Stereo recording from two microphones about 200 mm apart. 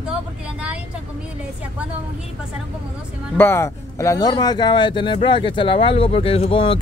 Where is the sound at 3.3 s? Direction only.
10° left (ahead or behind).